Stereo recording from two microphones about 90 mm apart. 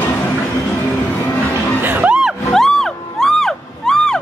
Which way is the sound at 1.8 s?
20° right (ahead or behind).